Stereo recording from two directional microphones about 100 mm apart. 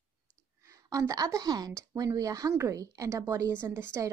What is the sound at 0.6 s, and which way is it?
A woman's voice, 35° right (ahead or behind).